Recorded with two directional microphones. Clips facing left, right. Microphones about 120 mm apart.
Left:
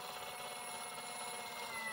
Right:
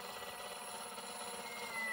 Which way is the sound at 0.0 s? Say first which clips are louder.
Even; 25° right (ahead or behind).